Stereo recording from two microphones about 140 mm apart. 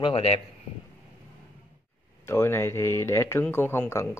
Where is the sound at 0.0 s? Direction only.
40° left (ahead or behind).